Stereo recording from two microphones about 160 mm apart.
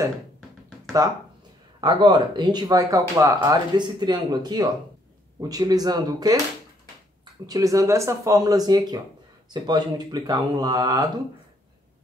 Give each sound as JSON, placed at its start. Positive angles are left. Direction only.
{"t": 1.8, "sound": "speech", "side_deg": -30}
{"t": 7.4, "sound": "speech", "side_deg": -20}